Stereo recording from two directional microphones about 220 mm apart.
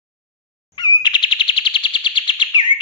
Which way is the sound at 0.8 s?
20° left (ahead or behind).